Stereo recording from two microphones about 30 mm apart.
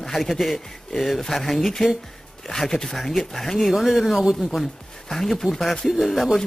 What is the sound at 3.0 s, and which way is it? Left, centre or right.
Speech, centre.